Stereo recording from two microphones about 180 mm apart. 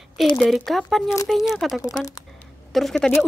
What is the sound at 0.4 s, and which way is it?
Speech, centre (ahead or behind).